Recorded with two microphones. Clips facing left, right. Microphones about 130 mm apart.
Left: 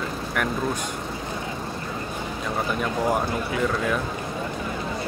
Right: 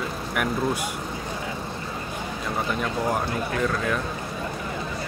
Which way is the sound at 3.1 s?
5° left (ahead or behind).